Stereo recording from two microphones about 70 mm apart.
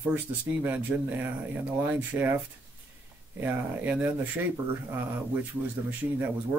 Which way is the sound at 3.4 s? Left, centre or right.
Right.